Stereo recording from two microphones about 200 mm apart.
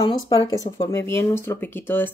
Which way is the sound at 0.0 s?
25° left (ahead or behind).